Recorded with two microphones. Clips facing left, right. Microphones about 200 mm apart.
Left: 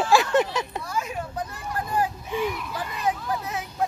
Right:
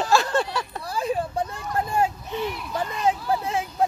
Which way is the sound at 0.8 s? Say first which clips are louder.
Right 5 dB; 35° right (ahead or behind).